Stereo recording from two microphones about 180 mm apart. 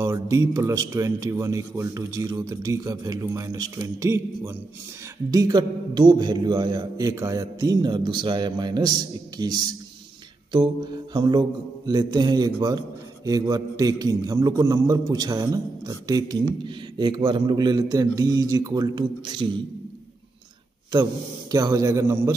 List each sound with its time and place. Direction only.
0.0 s speech: 15° right (ahead or behind)
5.3 s mantra: 20° right (ahead or behind)
20.9 s speech: 20° right (ahead or behind)